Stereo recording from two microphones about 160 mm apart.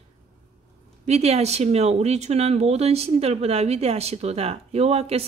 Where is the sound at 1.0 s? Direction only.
40° right (ahead or behind).